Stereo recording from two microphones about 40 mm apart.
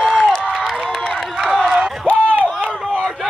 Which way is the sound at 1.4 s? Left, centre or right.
Centre.